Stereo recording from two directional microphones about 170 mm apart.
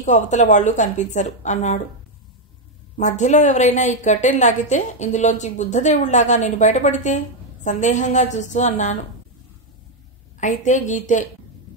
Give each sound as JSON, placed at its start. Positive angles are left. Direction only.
{"t": 0.0, "sound": "a woman's voice", "side_deg": 45}
{"t": 3.0, "sound": "a woman's voice", "side_deg": 45}
{"t": 10.4, "sound": "a woman's voice", "side_deg": 45}